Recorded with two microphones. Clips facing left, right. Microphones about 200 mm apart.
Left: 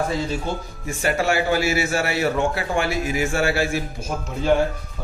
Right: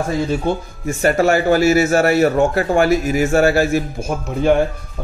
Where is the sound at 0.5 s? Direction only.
60° right (ahead or behind).